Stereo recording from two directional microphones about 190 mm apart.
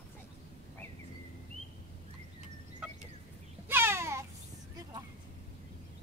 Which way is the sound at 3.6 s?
10° right (ahead or behind).